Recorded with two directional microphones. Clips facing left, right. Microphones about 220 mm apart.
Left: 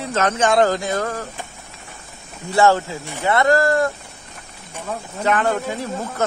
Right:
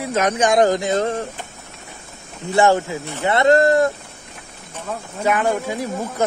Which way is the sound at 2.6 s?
15° right (ahead or behind).